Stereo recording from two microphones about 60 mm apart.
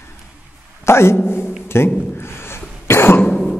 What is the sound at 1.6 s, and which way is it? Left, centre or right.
Speech, left.